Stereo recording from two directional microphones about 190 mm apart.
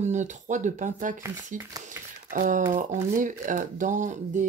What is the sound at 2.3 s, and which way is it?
Speech, 45° right (ahead or behind).